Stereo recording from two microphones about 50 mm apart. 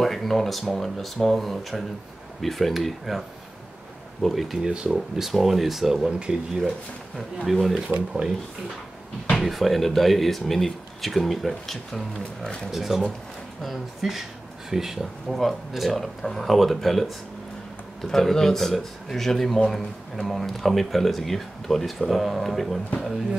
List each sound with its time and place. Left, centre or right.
0.0 s speech: centre
4.3 s speech: centre
4.6 s speech: centre
4.9 s speech: centre
6.0 s speech: centre
7.5 s speech: centre
8.1 s speech: centre
9.4 s speech: centre